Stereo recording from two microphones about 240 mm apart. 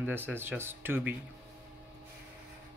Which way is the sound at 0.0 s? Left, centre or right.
Centre.